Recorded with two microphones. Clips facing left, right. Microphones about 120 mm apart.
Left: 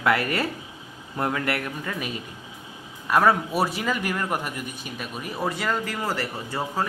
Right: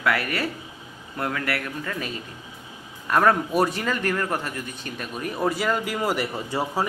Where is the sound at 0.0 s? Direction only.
25° left (ahead or behind).